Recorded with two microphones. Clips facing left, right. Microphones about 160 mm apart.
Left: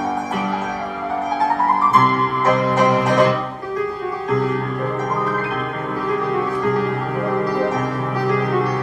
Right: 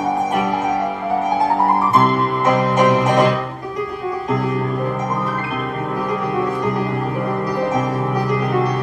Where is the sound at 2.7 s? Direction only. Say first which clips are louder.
Right 1 dB; 20° right (ahead or behind).